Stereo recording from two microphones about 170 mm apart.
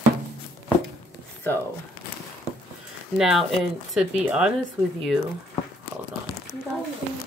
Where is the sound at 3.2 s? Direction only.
Centre (ahead or behind).